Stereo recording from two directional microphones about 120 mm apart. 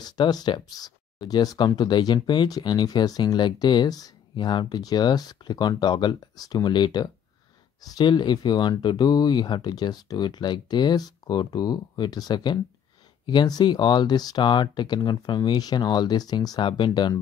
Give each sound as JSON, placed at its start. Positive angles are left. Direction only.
{"t": 0.0, "sound": "speech", "side_deg": 35}